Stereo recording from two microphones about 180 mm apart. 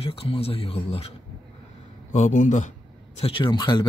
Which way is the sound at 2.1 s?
45° left (ahead or behind).